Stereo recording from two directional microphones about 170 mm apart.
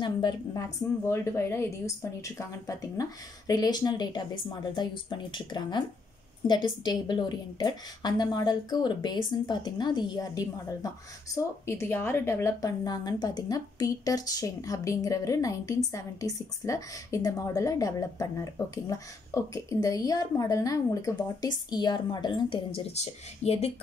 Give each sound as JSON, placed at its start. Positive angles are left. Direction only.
{"t": 0.0, "sound": "a woman's voice", "side_deg": 25}